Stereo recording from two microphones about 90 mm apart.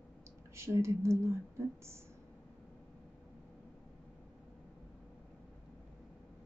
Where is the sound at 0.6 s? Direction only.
30° right (ahead or behind).